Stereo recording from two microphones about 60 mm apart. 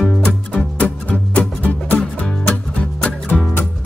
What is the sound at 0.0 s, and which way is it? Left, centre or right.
Music, centre.